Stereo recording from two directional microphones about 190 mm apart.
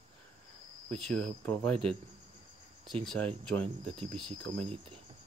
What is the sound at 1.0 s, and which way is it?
Speech, 5° left (ahead or behind).